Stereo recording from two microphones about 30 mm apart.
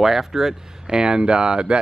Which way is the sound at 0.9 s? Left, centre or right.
Right.